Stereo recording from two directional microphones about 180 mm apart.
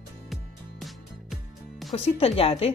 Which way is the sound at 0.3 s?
Centre (ahead or behind).